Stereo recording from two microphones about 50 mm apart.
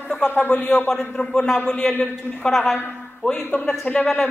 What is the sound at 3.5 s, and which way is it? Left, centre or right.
Speech, left.